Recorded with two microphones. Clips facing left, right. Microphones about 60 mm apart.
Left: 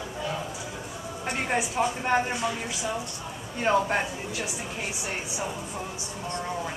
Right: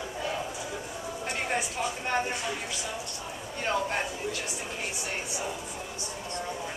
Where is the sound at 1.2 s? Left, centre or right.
Centre.